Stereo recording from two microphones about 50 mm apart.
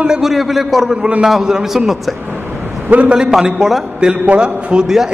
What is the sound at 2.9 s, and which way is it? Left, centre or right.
Speech, right.